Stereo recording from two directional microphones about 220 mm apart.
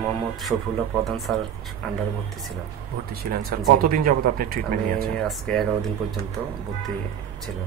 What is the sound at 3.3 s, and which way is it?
A man's voice, 40° right (ahead or behind).